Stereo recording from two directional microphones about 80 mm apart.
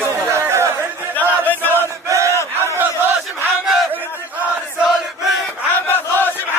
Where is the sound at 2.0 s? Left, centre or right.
Right.